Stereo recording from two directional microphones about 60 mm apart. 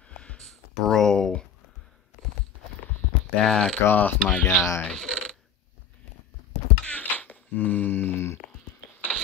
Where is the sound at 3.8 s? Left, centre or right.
Left.